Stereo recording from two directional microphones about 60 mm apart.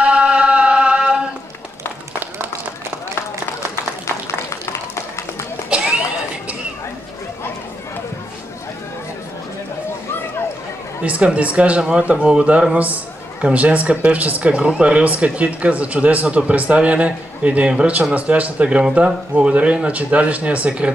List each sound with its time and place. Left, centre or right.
0.0 s chant: centre
5.8 s a sound: centre
11.1 s speech: right